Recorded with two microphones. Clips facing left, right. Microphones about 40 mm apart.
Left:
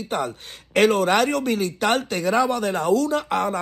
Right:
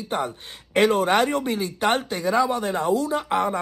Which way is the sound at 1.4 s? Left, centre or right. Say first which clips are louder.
Left 3 dB; left.